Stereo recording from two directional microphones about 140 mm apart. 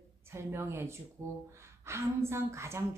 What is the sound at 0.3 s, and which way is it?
A woman's voice, 20° right (ahead or behind).